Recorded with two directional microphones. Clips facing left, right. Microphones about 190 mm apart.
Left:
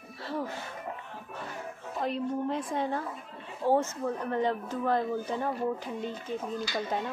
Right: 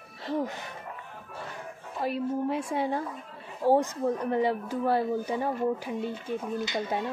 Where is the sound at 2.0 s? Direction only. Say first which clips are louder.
Right 2 dB; 5° right (ahead or behind).